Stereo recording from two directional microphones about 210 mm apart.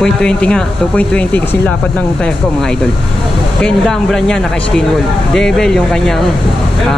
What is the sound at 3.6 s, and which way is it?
Speech, 5° left (ahead or behind).